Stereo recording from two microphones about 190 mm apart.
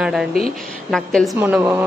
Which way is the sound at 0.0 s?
Centre (ahead or behind).